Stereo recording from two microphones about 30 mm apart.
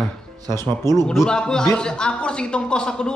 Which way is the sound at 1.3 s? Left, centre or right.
Left.